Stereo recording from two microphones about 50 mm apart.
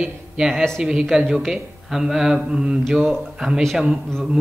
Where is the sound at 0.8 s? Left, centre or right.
Centre.